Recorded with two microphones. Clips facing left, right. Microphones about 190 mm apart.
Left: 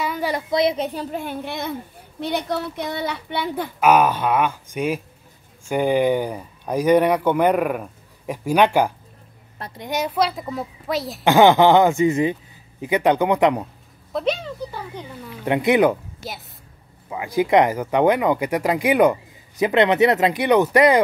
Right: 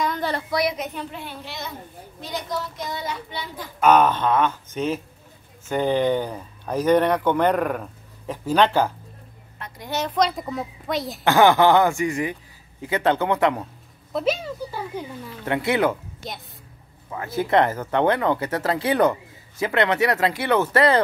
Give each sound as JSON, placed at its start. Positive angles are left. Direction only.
{"t": 0.0, "sound": "a sound", "side_deg": 10}
{"t": 0.5, "sound": "a woman's voice", "side_deg": 25}
{"t": 1.1, "sound": "a woman's voice", "side_deg": 50}
{"t": 3.8, "sound": "a woman's voice", "side_deg": 10}
{"t": 11.2, "sound": "speech", "side_deg": 15}
{"t": 14.1, "sound": "a woman's voice", "side_deg": -5}
{"t": 15.4, "sound": "speech", "side_deg": 20}
{"t": 17.1, "sound": "speech", "side_deg": 15}